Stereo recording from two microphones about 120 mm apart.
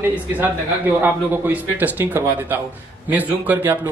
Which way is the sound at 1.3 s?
15° right (ahead or behind).